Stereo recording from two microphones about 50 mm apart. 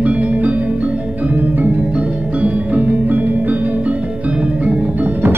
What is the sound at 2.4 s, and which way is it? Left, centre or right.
Music, right.